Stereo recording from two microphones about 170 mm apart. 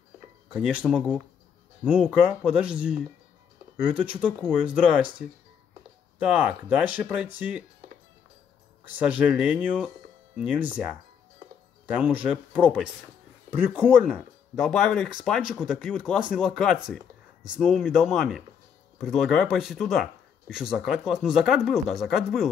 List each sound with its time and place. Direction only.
0.5 s speech: 10° right (ahead or behind)
6.3 s speech: 10° right (ahead or behind)
8.9 s speech: 10° right (ahead or behind)
14.0 s speech: centre (ahead or behind)